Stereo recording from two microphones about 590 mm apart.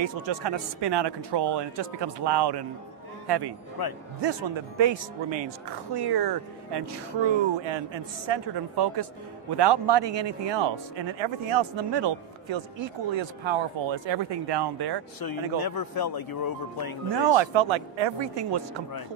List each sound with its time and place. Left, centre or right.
0.0 s a man's voice: right
3.8 s speech: left
4.2 s speech: right
15.1 s speech: left
17.2 s speech: right